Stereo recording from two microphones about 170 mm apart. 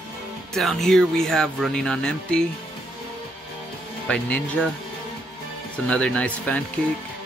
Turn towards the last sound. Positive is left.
turn(degrees=10)  # may be behind; listen again after turning